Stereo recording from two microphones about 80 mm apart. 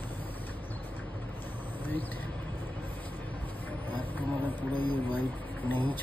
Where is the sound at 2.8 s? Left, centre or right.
Left.